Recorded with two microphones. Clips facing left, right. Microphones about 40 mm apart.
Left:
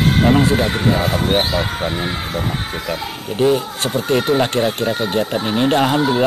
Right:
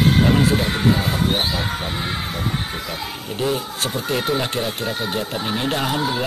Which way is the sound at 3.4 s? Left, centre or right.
Left.